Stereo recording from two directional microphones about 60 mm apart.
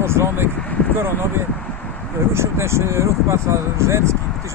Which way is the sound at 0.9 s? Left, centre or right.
Right.